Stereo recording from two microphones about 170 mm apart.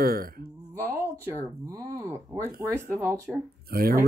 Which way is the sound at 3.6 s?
65° right (ahead or behind).